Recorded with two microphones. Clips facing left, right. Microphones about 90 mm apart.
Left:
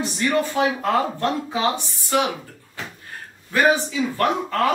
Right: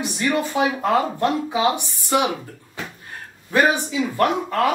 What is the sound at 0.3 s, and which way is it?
Speech, 15° right (ahead or behind).